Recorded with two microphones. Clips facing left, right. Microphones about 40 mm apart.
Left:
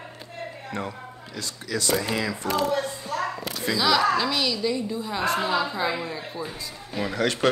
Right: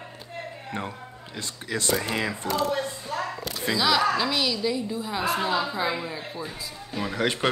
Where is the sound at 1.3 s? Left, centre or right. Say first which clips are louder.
Left 1 dB; right.